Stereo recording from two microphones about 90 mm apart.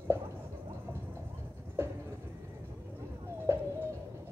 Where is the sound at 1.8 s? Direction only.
25° right (ahead or behind).